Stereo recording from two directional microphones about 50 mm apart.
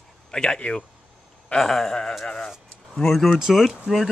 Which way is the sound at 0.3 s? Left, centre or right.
Centre.